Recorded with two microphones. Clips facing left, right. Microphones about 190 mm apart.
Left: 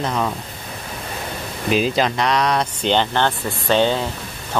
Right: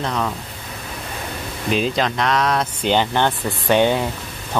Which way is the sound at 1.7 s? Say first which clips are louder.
Left 2 dB; 5° left (ahead or behind).